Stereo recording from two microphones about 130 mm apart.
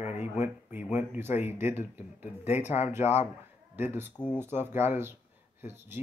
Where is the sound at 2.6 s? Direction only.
60° left (ahead or behind).